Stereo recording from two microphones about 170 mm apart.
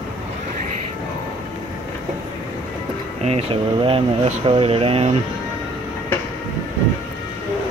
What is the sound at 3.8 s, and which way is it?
Speech, 35° right (ahead or behind).